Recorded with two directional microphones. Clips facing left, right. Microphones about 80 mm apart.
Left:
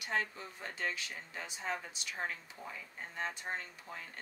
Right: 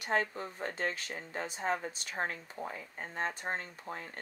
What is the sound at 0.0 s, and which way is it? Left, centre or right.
Speech, right.